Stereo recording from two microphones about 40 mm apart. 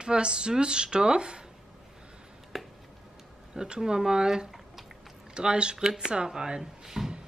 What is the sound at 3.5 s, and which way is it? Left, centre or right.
Speech, centre.